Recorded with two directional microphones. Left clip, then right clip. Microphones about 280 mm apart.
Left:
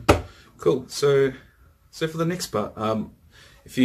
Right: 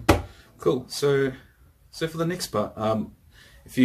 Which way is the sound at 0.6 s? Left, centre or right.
Centre.